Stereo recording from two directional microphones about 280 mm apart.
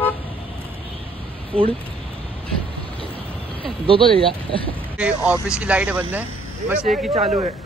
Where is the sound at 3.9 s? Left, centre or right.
Centre.